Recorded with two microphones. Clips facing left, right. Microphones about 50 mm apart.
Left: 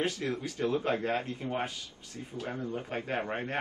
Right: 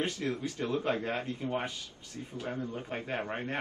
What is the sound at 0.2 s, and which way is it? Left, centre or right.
Speech, centre.